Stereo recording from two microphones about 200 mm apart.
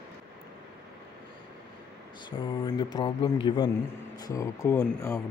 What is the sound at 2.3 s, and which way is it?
A man's voice, 20° left (ahead or behind).